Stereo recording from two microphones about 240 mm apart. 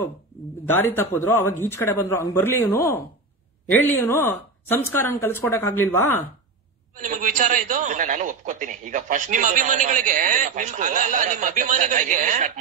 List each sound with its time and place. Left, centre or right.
0.7 s a man's voice: centre
7.0 s a man's voice: right